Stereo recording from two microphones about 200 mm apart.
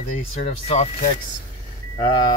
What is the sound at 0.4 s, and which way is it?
Speech, 30° left (ahead or behind).